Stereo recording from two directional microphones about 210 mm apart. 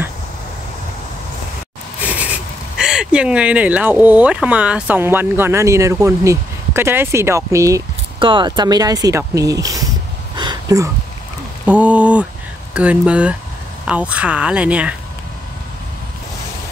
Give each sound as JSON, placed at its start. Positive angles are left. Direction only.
{"t": 2.0, "sound": "speech", "side_deg": -5}
{"t": 10.3, "sound": "a sound", "side_deg": -20}
{"t": 11.6, "sound": "speech", "side_deg": -5}